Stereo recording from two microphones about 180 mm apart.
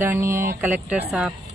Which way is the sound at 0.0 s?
15° right (ahead or behind).